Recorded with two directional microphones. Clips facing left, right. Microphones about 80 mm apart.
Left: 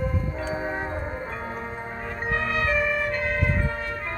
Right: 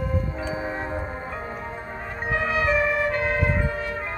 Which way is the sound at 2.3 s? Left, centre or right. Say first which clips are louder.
Right 2 dB; centre.